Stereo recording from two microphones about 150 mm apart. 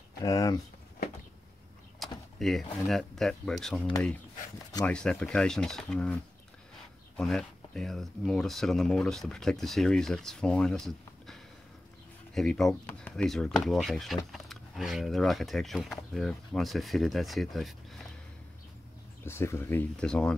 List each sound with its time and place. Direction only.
0.2 s speech: 25° left (ahead or behind)
2.0 s power windows: centre (ahead or behind)
2.9 s speech: centre (ahead or behind)
7.2 s speech: 5° left (ahead or behind)
19.2 s speech: 15° left (ahead or behind)